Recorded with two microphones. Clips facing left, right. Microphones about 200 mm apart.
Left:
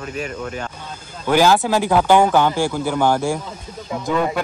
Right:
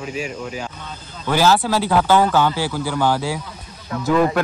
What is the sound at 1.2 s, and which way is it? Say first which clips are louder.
Speech: left 2 dB; 15° left (ahead or behind).